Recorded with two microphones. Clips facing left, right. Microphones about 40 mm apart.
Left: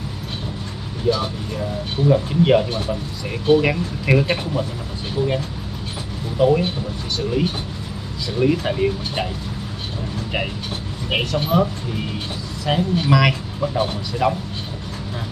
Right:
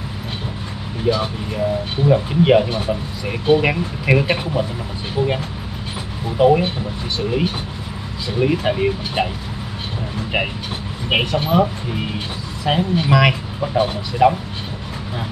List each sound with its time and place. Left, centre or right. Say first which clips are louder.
1.0 s speech: right 1 dB; centre
11.1 s speech: right 3 dB; centre